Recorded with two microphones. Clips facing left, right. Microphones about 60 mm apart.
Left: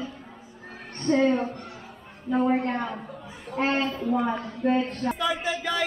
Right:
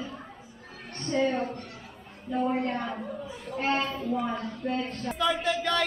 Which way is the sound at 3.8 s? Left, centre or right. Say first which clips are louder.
Left 3 dB; centre.